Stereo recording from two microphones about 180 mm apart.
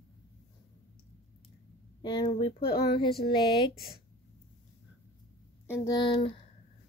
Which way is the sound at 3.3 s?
25° left (ahead or behind).